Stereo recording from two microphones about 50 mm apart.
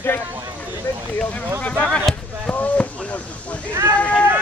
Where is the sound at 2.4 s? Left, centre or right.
Left.